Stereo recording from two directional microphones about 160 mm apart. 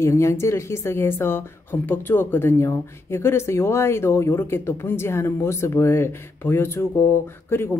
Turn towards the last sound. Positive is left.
turn(degrees=15)  # may be behind; listen again after turning